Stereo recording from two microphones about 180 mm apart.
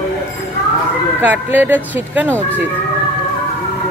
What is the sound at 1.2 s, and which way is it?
Speech, 10° right (ahead or behind).